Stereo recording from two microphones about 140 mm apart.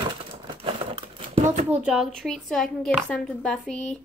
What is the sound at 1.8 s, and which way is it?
A woman's voice, centre (ahead or behind).